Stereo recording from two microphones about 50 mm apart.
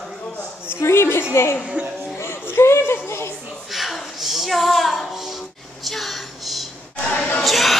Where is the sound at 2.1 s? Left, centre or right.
Left.